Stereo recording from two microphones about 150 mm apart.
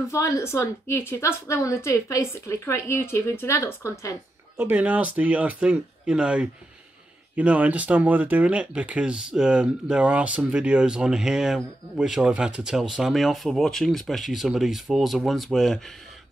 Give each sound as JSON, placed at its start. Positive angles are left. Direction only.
{"t": 0.1, "sound": "a woman's voice", "side_deg": 20}
{"t": 4.6, "sound": "speech", "side_deg": -10}